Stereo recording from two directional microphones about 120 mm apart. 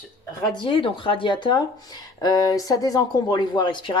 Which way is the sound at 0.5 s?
45° left (ahead or behind).